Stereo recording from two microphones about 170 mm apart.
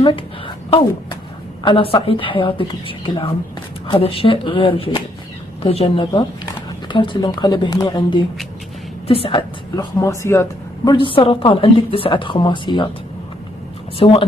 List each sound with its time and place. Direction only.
1.6 s a woman's voice: 30° left (ahead or behind)
9.9 s speech: 15° left (ahead or behind)
11.0 s a woman's voice: 30° left (ahead or behind)
13.9 s a woman's voice: 35° left (ahead or behind)